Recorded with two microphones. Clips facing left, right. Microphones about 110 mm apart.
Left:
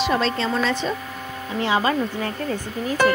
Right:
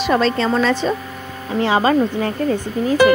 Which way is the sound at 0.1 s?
55° right (ahead or behind).